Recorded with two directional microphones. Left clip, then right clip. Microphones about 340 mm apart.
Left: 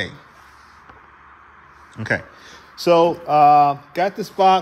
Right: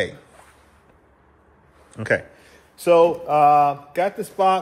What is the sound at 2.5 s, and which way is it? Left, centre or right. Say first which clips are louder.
Speech: left 1 dB; left.